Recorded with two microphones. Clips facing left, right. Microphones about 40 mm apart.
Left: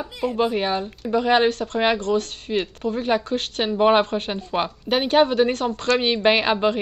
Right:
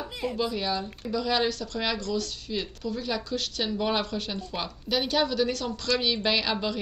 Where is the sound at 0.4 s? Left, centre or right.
Left.